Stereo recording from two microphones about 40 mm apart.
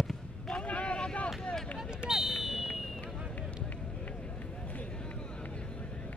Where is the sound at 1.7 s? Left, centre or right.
Centre.